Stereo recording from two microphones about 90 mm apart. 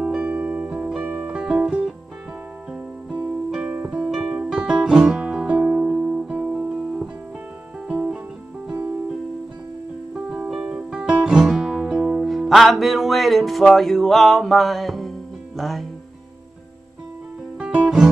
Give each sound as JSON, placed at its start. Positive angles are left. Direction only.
{"t": 0.0, "sound": "music", "side_deg": -15}
{"t": 6.3, "sound": "guitar", "side_deg": -15}
{"t": 10.3, "sound": "music", "side_deg": -10}
{"t": 17.6, "sound": "guitar", "side_deg": -10}